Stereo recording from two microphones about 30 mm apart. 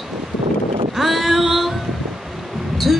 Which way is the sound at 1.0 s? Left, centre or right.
Centre.